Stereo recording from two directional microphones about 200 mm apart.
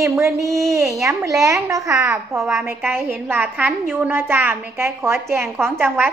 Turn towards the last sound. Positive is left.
turn(degrees=-10)  # may be behind; listen again after turning